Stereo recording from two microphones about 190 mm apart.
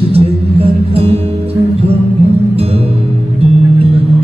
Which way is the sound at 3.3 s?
30° right (ahead or behind).